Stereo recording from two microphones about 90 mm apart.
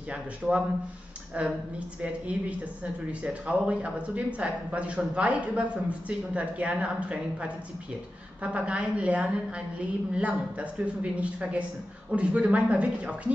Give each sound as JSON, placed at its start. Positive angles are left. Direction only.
{"t": 0.1, "sound": "speech", "side_deg": -15}